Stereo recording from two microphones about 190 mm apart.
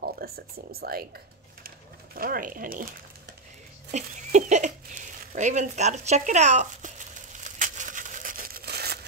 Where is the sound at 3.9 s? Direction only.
40° right (ahead or behind).